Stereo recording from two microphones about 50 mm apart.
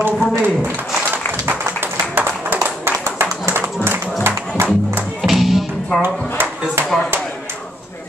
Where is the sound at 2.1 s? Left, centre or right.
Right.